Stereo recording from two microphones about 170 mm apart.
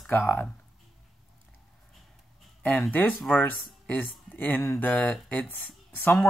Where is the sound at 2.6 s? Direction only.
10° left (ahead or behind).